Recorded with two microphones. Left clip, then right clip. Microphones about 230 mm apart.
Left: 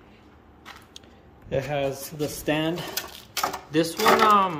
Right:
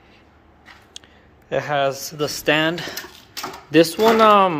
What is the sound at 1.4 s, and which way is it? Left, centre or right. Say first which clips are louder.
Speech: right 6 dB; centre.